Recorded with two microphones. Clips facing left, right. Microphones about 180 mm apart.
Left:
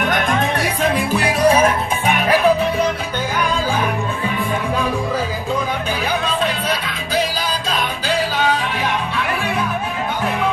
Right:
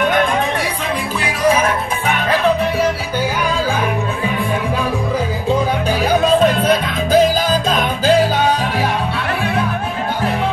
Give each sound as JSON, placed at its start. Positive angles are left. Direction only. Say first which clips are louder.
{"t": 2.0, "sound": "music", "louder": "left 1 dB", "side_deg": 10}
{"t": 6.4, "sound": "music", "louder": "right 7 dB", "side_deg": -45}